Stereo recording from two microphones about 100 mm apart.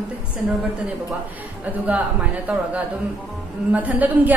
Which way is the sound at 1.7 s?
15° right (ahead or behind).